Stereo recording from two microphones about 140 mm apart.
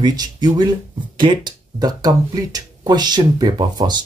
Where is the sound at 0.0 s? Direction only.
30° right (ahead or behind).